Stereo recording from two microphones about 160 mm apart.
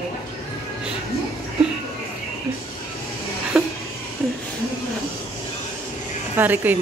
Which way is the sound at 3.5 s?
5° right (ahead or behind).